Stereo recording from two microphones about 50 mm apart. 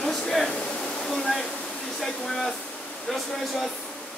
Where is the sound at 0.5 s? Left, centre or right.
Left.